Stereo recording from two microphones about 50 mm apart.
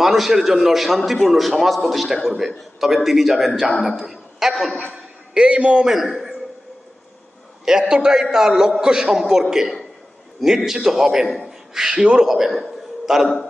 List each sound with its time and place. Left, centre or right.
0.0 s a man's voice: centre
5.3 s a man's voice: right
5.9 s a man's voice: centre
7.9 s a man's voice: centre
12.3 s a man's voice: centre